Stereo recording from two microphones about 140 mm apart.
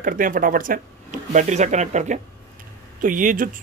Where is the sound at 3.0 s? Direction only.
70° right (ahead or behind).